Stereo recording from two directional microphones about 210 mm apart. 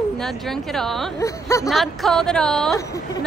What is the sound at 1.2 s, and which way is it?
Speech, 15° left (ahead or behind).